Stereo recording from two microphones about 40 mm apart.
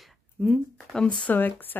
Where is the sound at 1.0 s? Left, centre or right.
Left.